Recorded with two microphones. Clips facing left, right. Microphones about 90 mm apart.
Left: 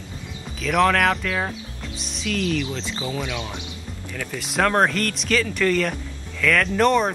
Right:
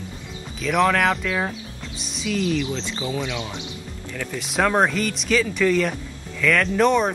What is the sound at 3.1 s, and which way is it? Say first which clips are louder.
Speech: right 1 dB; 20° right (ahead or behind).